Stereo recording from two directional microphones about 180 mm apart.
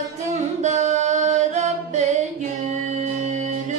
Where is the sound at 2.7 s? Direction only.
40° right (ahead or behind).